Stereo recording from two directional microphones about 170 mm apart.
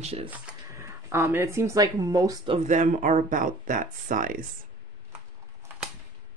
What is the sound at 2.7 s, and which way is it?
Speech, 50° right (ahead or behind).